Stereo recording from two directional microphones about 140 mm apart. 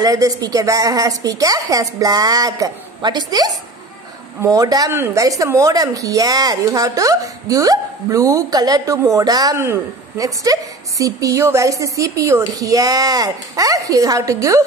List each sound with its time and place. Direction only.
0.0 s speech: 25° right (ahead or behind)